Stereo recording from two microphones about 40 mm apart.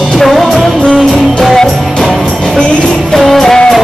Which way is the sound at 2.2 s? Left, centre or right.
Centre.